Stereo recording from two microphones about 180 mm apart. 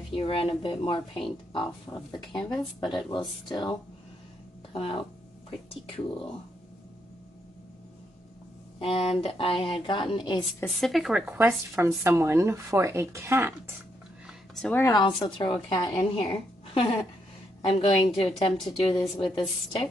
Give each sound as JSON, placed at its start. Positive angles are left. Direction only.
{"t": 0.1, "sound": "a woman's voice", "side_deg": 30}
{"t": 2.2, "sound": "speech", "side_deg": 0}
{"t": 3.1, "sound": "a woman's voice", "side_deg": 25}
{"t": 4.7, "sound": "speech", "side_deg": 30}
{"t": 8.7, "sound": "a woman's voice", "side_deg": 30}
{"t": 10.8, "sound": "speech", "side_deg": 0}
{"t": 14.5, "sound": "speech", "side_deg": 5}
{"t": 14.8, "sound": "a woman's voice", "side_deg": 25}
{"t": 18.5, "sound": "speech", "side_deg": 0}
{"t": 18.9, "sound": "a woman's voice", "side_deg": 30}